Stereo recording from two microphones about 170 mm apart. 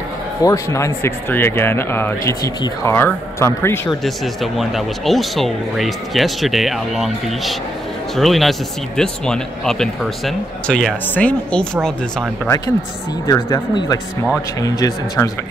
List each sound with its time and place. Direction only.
0.4 s speech: 20° left (ahead or behind)
4.0 s speech: centre (ahead or behind)
13.3 s speech: 20° left (ahead or behind)